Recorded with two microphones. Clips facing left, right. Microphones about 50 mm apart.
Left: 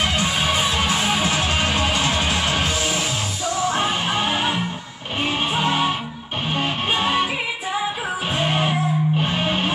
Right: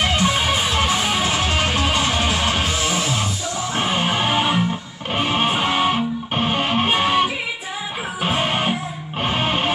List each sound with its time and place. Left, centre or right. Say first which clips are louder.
1.0 s music: even; centre
2.1 s music: right 1 dB; centre
3.7 s music: right 1 dB; right
8.4 s music: left 2 dB; right